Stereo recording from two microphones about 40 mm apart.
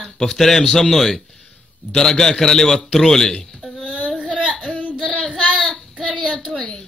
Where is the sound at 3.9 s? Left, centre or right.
Left.